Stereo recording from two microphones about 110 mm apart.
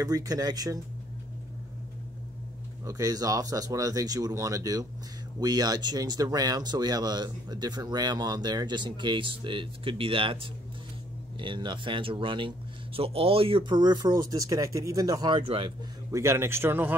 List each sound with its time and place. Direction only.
0.0 s speech: 35° right (ahead or behind)
2.8 s speech: 30° right (ahead or behind); by 15.7 s 50° right (ahead or behind)
16.1 s speech: 25° right (ahead or behind)